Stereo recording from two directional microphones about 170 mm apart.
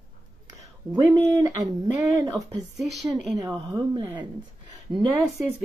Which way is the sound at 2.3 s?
20° right (ahead or behind).